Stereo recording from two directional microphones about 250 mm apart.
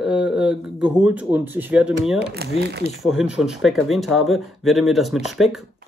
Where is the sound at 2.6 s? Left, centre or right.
Right.